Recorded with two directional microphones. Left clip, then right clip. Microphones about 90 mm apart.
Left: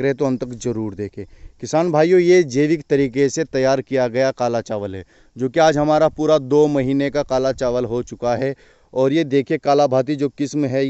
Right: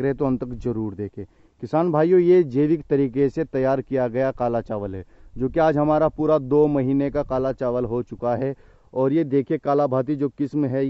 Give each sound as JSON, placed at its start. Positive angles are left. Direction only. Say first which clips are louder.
{"t": 0.0, "sound": "speech", "louder": "left 4 dB", "side_deg": 15}
{"t": 1.6, "sound": "speech", "louder": "left 4 dB", "side_deg": 10}